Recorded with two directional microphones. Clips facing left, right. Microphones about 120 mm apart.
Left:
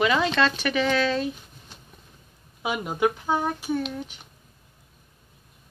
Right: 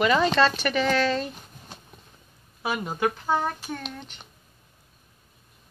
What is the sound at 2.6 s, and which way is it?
Speech, 15° left (ahead or behind).